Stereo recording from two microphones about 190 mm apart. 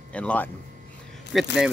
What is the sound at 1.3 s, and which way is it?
Speech, 5° right (ahead or behind).